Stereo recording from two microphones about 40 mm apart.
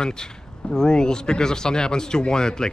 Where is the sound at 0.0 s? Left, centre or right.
Centre.